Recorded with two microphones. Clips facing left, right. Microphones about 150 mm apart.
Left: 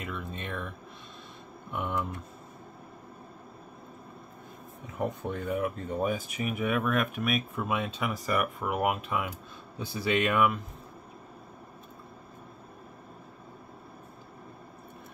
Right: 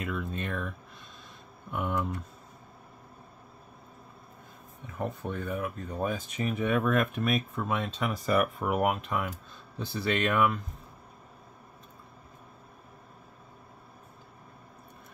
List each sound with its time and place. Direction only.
0.0 s speech: centre (ahead or behind)
4.9 s speech: 15° left (ahead or behind)
5.9 s speech: 10° left (ahead or behind)